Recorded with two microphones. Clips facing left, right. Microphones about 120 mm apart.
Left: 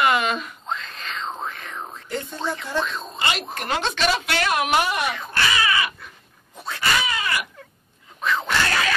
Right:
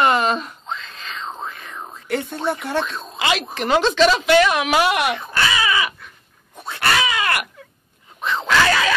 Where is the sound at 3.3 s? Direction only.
90° right; by 5.2 s 75° right (ahead or behind).